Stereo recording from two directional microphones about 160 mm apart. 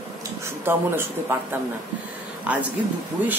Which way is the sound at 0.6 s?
15° right (ahead or behind).